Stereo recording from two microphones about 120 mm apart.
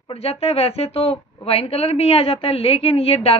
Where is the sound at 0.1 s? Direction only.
55° left (ahead or behind).